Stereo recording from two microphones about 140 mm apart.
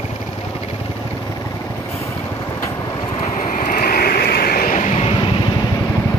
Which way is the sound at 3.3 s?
65° left (ahead or behind).